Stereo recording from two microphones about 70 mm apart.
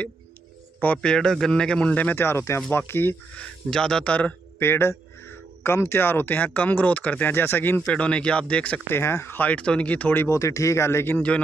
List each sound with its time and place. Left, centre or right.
0.9 s speech: centre
2.2 s speech: left
3.3 s speech: centre
4.6 s speech: left
7.8 s speech: centre
8.8 s speech: left
9.4 s speech: centre
10.2 s speech: left